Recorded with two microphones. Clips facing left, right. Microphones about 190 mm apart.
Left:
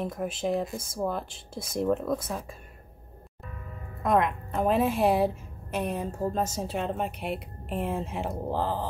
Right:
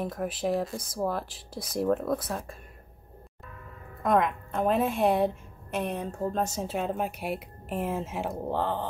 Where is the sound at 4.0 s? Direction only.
Centre (ahead or behind).